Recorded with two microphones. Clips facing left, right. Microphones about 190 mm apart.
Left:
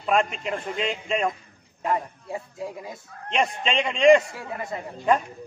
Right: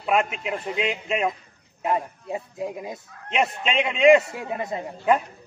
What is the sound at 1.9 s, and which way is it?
Speech, 20° right (ahead or behind).